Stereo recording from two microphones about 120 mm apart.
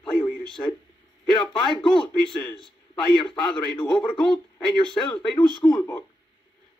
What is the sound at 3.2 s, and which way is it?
Speech, 40° left (ahead or behind).